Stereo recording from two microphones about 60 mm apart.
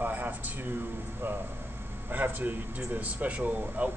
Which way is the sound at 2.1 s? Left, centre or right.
Right.